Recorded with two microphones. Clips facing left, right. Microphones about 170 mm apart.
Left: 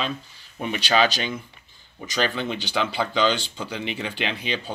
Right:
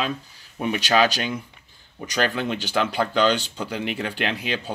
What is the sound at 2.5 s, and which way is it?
Speech, centre (ahead or behind).